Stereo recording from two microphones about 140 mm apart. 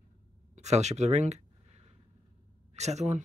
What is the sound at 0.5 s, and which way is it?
Speech, 55° right (ahead or behind).